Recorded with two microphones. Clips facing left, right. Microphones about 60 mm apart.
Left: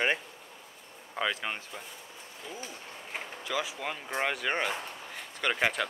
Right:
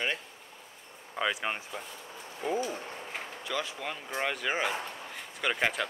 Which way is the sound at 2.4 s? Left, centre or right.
Right.